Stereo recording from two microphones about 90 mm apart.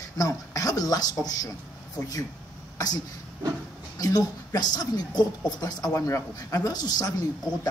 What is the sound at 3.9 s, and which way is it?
Speech, 45° left (ahead or behind).